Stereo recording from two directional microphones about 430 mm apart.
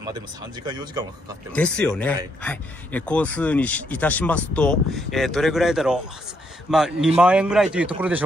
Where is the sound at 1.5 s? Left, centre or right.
Centre.